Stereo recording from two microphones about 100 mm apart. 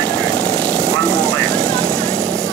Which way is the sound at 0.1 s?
10° left (ahead or behind).